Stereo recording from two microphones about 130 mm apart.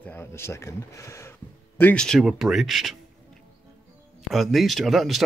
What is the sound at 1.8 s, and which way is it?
A man's voice, 10° left (ahead or behind).